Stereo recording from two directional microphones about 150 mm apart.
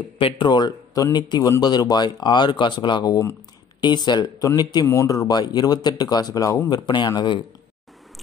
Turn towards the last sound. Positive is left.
turn(degrees=30)  # may be behind; listen again after turning